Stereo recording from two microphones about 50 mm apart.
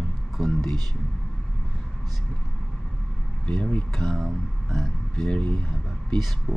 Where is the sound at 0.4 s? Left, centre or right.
Centre.